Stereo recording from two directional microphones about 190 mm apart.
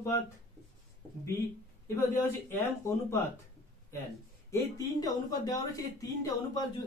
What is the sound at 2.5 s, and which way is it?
Speech, 15° left (ahead or behind).